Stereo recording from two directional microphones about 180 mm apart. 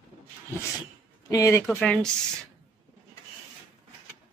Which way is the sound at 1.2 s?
20° left (ahead or behind).